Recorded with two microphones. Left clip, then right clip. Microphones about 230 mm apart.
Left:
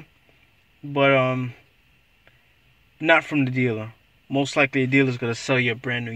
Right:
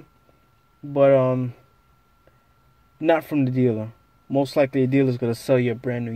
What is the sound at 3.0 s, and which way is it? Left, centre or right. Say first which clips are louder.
Speech: left 1 dB; centre.